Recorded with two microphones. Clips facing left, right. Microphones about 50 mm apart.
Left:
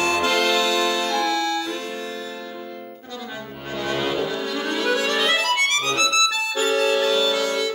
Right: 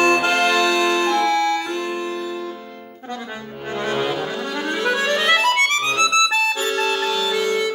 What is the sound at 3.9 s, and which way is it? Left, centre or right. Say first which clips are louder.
Accordion: right 1 dB; centre.